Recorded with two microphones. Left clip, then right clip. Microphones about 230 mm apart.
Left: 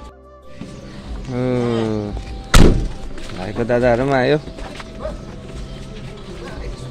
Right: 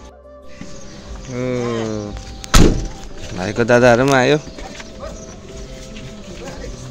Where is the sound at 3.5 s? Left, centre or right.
Right.